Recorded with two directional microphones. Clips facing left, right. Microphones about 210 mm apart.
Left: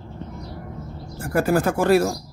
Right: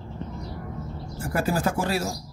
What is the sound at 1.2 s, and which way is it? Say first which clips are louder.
Speech: left 5 dB; 55° left (ahead or behind).